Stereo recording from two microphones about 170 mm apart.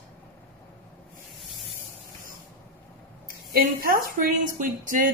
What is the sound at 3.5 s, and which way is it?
A woman's voice, 60° right (ahead or behind).